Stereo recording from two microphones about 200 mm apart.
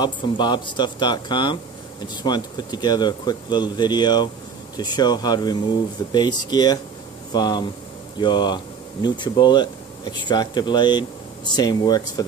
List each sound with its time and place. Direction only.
0.0 s speech: 20° left (ahead or behind)